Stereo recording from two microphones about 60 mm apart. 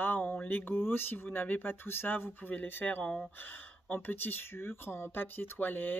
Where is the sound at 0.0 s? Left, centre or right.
Left.